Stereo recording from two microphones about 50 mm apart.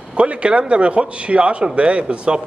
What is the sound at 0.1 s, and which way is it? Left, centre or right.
A man's voice, right.